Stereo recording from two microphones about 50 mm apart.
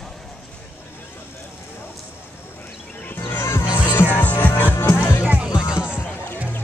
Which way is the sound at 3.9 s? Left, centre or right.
Left.